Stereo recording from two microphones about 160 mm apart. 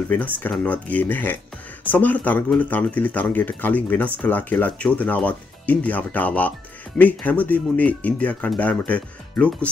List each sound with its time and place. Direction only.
0.4 s speech: 10° left (ahead or behind)